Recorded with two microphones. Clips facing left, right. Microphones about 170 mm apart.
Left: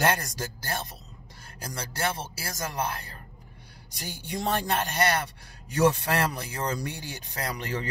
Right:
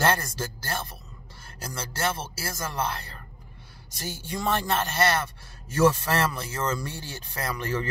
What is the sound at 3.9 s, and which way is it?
A man's voice, 15° left (ahead or behind).